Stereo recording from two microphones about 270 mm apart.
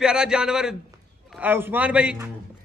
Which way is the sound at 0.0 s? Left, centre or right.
Centre.